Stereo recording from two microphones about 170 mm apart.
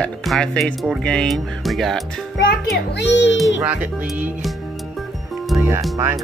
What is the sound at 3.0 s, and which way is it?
Speech, 90° left.